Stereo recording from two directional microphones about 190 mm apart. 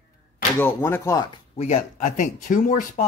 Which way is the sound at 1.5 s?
35° left (ahead or behind).